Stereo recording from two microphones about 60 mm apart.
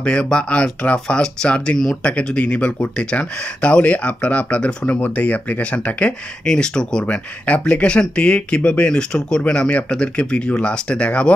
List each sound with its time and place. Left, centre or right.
0.0 s speech: centre